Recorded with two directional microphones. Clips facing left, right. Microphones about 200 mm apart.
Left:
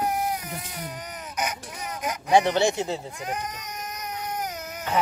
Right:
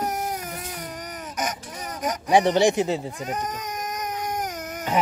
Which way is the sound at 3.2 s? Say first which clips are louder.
Right 3 dB; 40° right (ahead or behind).